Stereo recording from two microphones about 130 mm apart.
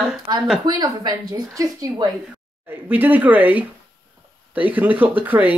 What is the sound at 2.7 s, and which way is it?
Speech, 15° right (ahead or behind).